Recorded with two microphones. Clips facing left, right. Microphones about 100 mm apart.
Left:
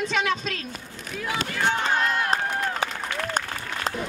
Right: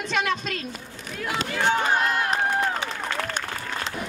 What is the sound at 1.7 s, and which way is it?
Speech, 10° right (ahead or behind).